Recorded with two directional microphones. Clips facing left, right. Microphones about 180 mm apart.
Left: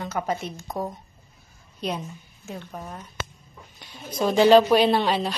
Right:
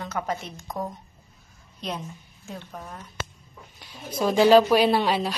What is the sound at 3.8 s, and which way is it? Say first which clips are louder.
Speech: left 1 dB; 5° right (ahead or behind).